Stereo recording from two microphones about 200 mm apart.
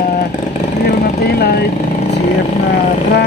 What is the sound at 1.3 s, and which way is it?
Vehicle, 55° left (ahead or behind).